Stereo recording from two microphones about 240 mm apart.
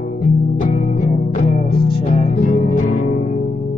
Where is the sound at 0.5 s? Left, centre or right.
Left.